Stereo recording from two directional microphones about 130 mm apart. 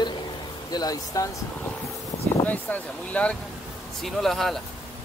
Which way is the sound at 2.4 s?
10° left (ahead or behind).